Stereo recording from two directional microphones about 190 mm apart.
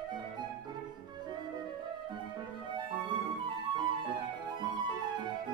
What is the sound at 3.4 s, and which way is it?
Music, 25° right (ahead or behind).